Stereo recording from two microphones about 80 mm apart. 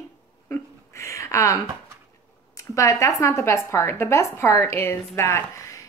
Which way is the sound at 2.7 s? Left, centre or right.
Left.